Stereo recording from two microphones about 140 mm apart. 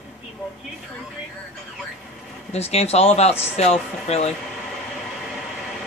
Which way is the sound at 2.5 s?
50° left (ahead or behind).